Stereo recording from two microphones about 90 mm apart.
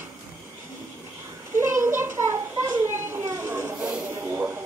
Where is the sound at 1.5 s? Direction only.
30° right (ahead or behind).